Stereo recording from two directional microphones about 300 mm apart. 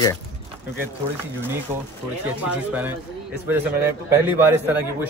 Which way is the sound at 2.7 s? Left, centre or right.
Centre.